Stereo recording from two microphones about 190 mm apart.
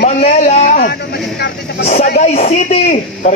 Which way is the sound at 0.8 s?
60° left (ahead or behind).